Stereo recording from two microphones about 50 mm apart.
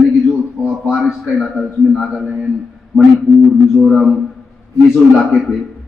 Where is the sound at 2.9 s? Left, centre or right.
Centre.